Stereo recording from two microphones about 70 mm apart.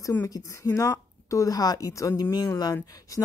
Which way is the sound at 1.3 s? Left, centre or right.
Left.